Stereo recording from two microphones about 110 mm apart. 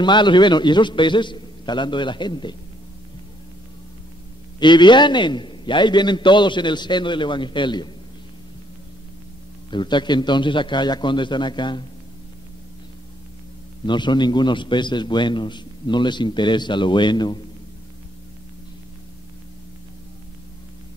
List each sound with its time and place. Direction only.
0.0 s a man's voice: 45° left (ahead or behind)
4.6 s a man's voice: 45° left (ahead or behind)
9.7 s a man's voice: 45° left (ahead or behind)
13.8 s a man's voice: 45° left (ahead or behind)